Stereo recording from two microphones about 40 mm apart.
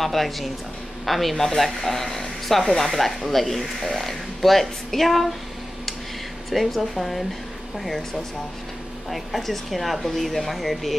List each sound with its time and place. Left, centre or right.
0.0 s speech: centre
6.5 s speech: centre
9.1 s speech: centre